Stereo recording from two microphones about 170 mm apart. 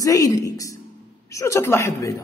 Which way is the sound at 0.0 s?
20° left (ahead or behind).